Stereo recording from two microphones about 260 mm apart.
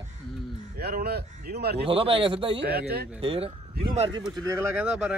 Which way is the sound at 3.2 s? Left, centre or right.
Right.